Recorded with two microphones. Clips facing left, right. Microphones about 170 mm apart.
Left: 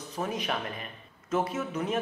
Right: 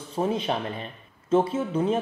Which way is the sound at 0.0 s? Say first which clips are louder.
Right 7 dB; 30° right (ahead or behind).